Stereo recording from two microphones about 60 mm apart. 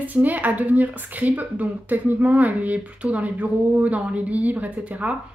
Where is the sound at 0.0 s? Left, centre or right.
Right.